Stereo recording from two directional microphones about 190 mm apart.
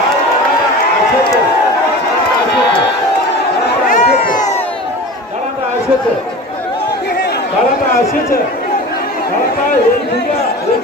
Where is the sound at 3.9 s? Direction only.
45° left (ahead or behind).